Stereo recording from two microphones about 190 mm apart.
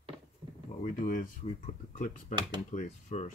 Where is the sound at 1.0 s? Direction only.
45° left (ahead or behind).